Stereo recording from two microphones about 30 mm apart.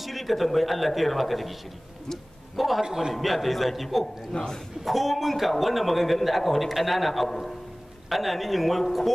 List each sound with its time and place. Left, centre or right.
0.0 s a man's voice: centre
2.5 s a man's voice: centre
2.8 s a man's voice: centre
3.2 s a man's voice: centre
4.3 s a man's voice: left
4.8 s a man's voice: centre